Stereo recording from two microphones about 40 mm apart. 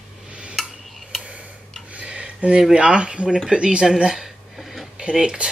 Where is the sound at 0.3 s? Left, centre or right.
Right.